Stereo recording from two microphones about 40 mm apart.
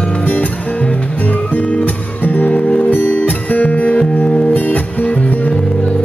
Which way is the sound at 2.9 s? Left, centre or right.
Left.